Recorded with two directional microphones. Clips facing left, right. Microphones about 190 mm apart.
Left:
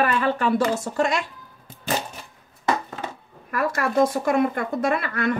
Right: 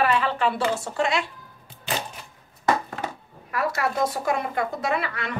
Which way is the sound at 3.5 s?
50° left (ahead or behind).